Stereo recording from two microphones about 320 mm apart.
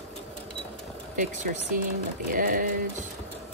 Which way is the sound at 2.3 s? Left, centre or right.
Right.